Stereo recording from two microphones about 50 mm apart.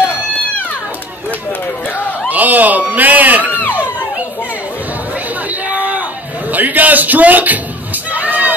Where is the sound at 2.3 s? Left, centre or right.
Right.